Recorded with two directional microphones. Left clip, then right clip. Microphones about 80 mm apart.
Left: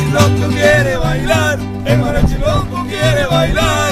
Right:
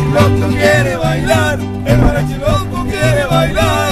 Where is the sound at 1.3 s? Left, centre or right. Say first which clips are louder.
Even; centre.